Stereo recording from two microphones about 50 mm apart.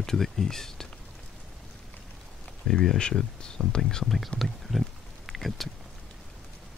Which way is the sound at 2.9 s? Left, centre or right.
Centre.